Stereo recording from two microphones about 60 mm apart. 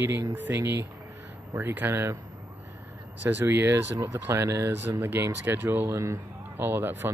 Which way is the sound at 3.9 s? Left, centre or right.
Right.